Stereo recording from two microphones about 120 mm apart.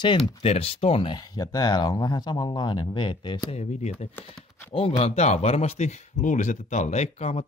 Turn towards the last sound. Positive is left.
turn(degrees=60)  # may be behind; listen again after turning